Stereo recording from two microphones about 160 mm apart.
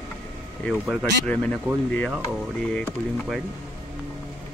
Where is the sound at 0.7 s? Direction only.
Centre (ahead or behind).